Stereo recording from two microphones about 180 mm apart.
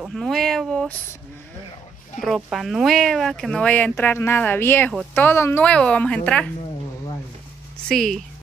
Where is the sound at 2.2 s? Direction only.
Centre (ahead or behind).